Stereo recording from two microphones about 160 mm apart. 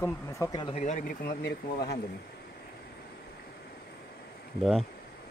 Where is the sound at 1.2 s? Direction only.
85° left.